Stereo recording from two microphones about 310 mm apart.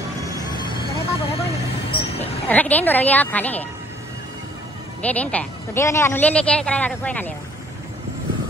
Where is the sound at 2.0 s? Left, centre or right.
Centre.